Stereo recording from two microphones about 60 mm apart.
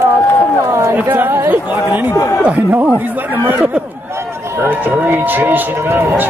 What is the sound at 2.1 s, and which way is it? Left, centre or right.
Speech, left.